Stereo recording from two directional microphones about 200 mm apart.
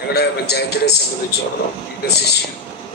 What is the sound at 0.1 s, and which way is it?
Speech, 55° left (ahead or behind).